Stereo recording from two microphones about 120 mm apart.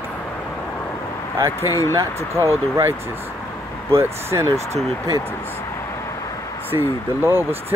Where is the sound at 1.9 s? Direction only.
25° right (ahead or behind).